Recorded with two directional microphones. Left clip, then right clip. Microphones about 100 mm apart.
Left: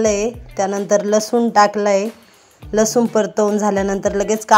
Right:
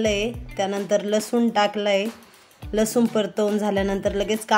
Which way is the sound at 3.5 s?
40° left (ahead or behind).